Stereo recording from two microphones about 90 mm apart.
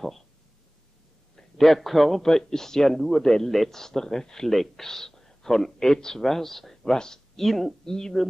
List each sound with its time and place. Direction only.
1.3 s a man's voice: centre (ahead or behind)